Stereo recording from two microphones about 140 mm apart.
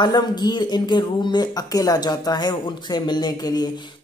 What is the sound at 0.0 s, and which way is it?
Speech, 30° left (ahead or behind).